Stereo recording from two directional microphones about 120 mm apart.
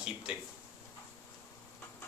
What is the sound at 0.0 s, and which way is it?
Speech, 10° right (ahead or behind).